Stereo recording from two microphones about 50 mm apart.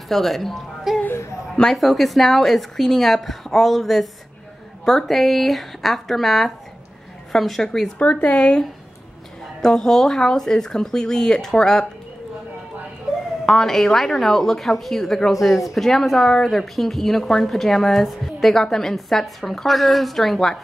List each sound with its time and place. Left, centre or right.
0.1 s speech: centre
8.0 s speech: left
9.6 s speech: centre
13.5 s speech: centre